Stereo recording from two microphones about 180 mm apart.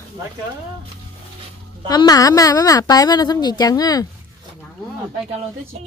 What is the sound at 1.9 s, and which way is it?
Speech, 20° left (ahead or behind).